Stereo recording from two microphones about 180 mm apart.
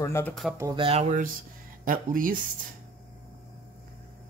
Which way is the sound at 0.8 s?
35° right (ahead or behind).